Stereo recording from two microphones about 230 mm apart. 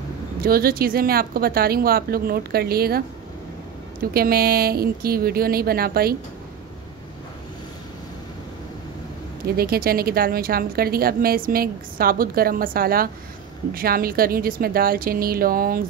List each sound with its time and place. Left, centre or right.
0.4 s a woman's voice: right
4.1 s a woman's voice: right
9.6 s a woman's voice: right